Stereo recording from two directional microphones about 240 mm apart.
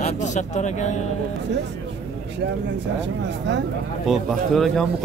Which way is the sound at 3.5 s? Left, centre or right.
Right.